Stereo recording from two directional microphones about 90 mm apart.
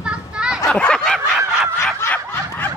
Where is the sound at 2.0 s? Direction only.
25° left (ahead or behind).